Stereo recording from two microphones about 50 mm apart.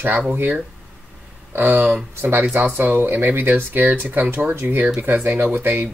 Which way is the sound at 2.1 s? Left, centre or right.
Right.